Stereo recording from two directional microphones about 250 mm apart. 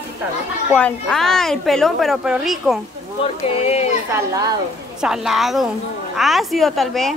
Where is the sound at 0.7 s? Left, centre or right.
Centre.